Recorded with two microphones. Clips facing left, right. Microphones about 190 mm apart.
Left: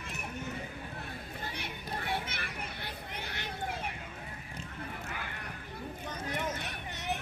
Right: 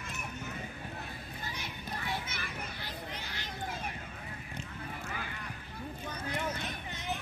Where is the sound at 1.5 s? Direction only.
60° left (ahead or behind).